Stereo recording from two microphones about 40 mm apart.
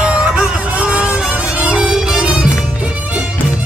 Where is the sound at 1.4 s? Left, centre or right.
Right.